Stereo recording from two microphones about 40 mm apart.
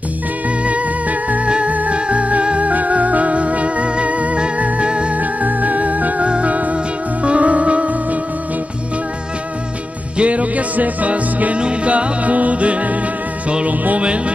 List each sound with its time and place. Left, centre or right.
0.7 s music: right
5.2 s music: right
10.1 s music: right
13.9 s speech: right